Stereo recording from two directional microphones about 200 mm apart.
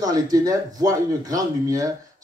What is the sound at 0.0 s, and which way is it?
Speech, 20° right (ahead or behind).